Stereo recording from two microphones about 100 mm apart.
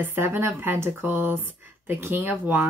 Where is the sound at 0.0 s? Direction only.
20° right (ahead or behind).